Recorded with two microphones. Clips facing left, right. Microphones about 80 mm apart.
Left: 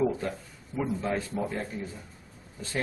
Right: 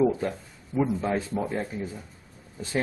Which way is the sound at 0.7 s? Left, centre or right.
Centre.